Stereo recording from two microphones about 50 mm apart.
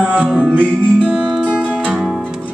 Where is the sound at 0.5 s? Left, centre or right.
Right.